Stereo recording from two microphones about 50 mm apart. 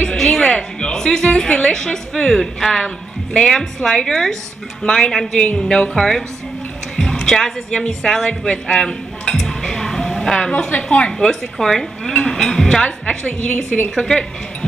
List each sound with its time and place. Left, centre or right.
0.2 s music: centre
1.0 s a woman's voice: centre
8.3 s dishes: centre
10.8 s speech: left
11.1 s a woman's voice: centre
13.9 s a woman's voice: centre